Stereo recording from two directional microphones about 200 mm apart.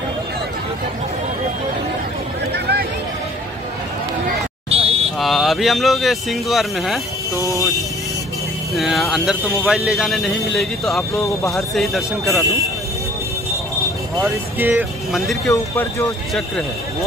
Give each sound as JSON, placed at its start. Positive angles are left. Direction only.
{"t": 4.6, "sound": "vehicle", "side_deg": -30}
{"t": 5.2, "sound": "speech", "side_deg": 0}
{"t": 7.3, "sound": "speech", "side_deg": -15}
{"t": 8.7, "sound": "speech", "side_deg": 0}
{"t": 14.2, "sound": "speech", "side_deg": -10}
{"t": 15.5, "sound": "speech", "side_deg": 10}